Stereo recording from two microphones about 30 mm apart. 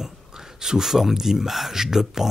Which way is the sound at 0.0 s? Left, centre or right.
Centre.